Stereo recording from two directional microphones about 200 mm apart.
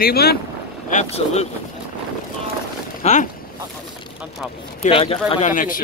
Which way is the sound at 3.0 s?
35° left (ahead or behind).